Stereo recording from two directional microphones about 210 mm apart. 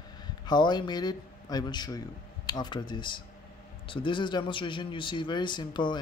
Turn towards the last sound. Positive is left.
turn(degrees=20)  # may be behind; listen again after turning